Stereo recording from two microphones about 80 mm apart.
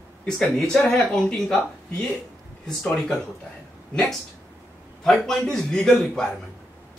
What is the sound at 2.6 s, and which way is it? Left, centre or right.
Speech, centre.